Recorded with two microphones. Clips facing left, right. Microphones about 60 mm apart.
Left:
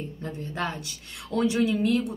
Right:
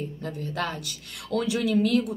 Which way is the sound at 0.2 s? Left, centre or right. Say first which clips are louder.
Even; left.